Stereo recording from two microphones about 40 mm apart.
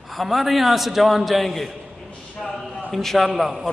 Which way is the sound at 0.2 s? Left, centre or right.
Centre.